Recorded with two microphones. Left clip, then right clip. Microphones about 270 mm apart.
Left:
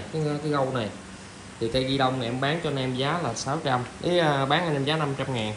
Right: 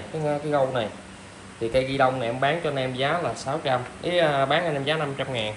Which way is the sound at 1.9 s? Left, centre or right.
Centre.